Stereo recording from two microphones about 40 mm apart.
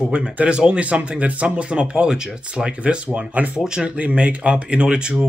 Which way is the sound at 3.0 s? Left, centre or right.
Right.